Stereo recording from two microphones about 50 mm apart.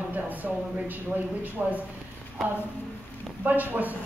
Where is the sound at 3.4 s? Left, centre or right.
Right.